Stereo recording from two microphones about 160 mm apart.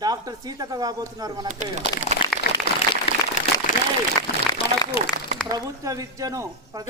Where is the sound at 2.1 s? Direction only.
45° left (ahead or behind).